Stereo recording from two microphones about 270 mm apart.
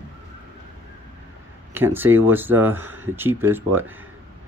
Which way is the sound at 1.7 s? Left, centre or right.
Centre.